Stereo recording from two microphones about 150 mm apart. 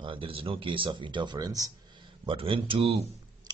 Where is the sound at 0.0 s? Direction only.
35° right (ahead or behind).